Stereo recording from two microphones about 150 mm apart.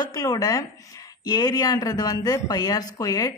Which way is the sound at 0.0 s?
25° left (ahead or behind).